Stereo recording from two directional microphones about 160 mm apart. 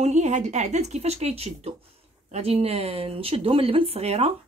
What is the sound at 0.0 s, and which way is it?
Speech, 45° right (ahead or behind).